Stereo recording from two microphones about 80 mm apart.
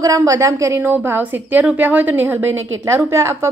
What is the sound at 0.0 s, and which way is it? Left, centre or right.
Speech, right.